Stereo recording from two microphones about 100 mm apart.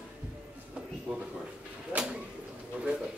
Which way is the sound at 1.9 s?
20° right (ahead or behind).